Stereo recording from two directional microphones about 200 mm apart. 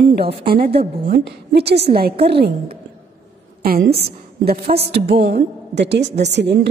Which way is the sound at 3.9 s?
50° right (ahead or behind).